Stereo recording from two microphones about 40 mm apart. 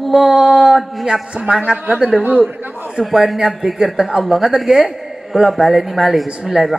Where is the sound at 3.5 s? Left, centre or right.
Centre.